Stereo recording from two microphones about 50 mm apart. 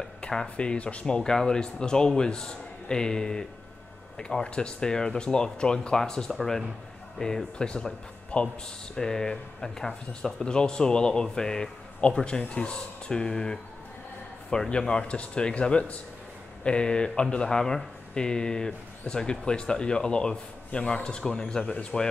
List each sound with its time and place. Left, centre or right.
0.3 s speech: centre